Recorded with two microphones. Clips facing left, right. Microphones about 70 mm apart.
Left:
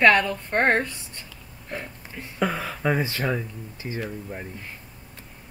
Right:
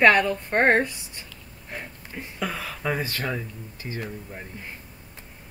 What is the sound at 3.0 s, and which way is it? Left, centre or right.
Speech, centre.